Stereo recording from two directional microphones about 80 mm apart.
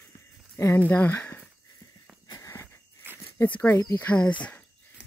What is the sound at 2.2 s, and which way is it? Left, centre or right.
Wheeze, left.